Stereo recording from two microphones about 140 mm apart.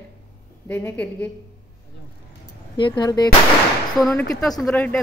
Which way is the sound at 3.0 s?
30° left (ahead or behind).